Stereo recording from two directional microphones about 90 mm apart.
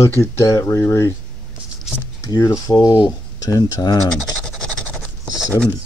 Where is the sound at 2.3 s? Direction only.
40° left (ahead or behind).